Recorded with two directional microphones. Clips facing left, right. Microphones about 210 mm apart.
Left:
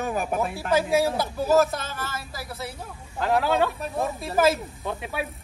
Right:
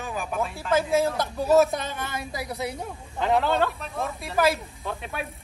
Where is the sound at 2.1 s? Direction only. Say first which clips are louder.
Right 4 dB; 20° right (ahead or behind).